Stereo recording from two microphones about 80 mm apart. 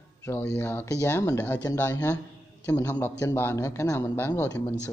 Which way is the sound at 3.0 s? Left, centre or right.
Left.